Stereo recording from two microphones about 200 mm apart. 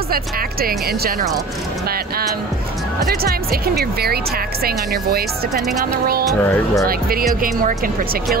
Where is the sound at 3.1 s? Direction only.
50° right (ahead or behind).